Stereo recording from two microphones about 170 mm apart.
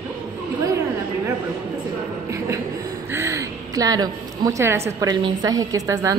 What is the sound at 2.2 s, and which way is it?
Music, 15° right (ahead or behind).